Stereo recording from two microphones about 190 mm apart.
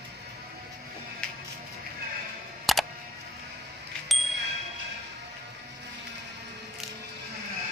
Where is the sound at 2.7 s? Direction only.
Centre (ahead or behind).